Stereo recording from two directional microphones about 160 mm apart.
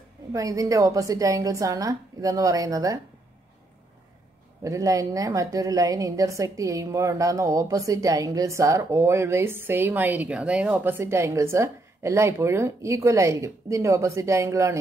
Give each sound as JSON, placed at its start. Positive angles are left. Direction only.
{"t": 0.3, "sound": "a woman's voice", "side_deg": -20}
{"t": 4.6, "sound": "a woman's voice", "side_deg": -20}